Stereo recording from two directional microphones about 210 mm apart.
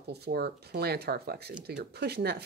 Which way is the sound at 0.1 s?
50° right (ahead or behind).